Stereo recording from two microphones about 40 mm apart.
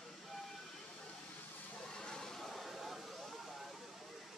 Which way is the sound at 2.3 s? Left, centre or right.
Centre.